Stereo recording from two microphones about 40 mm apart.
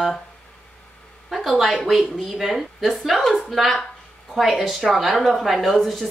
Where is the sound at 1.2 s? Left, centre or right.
Centre.